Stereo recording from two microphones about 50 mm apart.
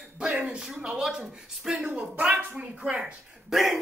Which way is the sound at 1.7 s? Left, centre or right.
Right.